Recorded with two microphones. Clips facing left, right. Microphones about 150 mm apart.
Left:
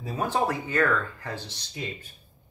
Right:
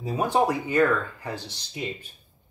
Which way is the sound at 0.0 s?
15° right (ahead or behind).